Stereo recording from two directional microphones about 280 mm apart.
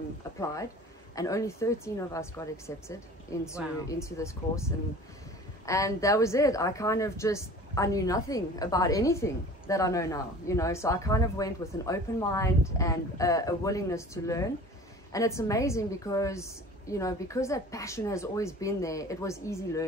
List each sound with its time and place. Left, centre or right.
1.1 s a woman's voice: centre